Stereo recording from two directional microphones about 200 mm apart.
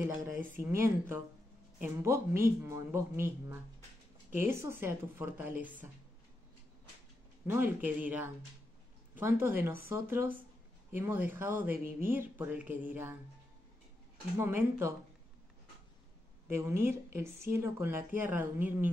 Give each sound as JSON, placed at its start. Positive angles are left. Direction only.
{"t": 0.6, "sound": "speech", "side_deg": -15}
{"t": 7.4, "sound": "speech", "side_deg": -10}
{"t": 14.3, "sound": "speech", "side_deg": -15}
{"t": 16.4, "sound": "speech", "side_deg": -15}